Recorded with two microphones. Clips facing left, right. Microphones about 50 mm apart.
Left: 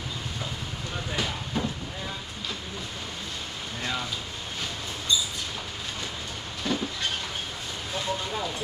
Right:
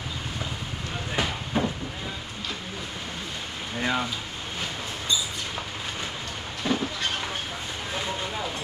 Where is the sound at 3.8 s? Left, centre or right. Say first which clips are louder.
Right 6 dB; right.